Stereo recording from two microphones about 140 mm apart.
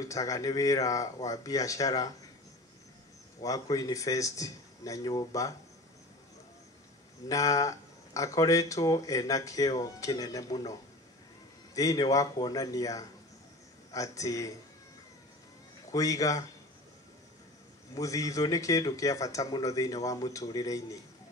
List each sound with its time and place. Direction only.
0.0 s speech: 25° left (ahead or behind)
3.4 s speech: 25° left (ahead or behind)
7.2 s speech: 25° left (ahead or behind)
15.9 s speech: 25° left (ahead or behind)
17.9 s speech: 25° left (ahead or behind)